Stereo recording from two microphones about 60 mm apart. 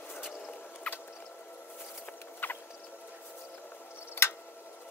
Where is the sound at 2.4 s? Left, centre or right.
Left.